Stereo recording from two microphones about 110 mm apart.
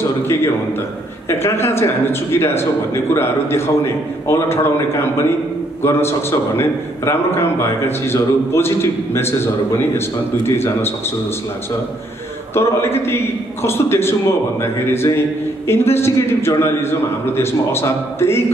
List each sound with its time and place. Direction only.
1.4 s a man's voice: 25° left (ahead or behind)
12.5 s a man's voice: 25° left (ahead or behind)